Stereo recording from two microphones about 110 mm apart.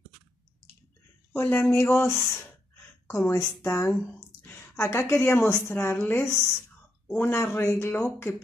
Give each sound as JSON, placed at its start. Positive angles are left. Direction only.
{"t": 1.3, "sound": "a woman's voice", "side_deg": 20}